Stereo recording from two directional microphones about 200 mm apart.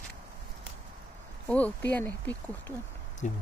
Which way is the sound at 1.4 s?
5° left (ahead or behind).